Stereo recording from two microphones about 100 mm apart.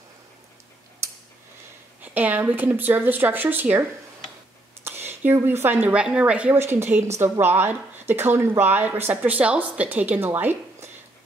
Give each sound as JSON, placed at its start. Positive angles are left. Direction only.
{"t": 2.0, "sound": "speech", "side_deg": -15}
{"t": 4.8, "sound": "speech", "side_deg": -25}
{"t": 6.5, "sound": "a woman's voice", "side_deg": -25}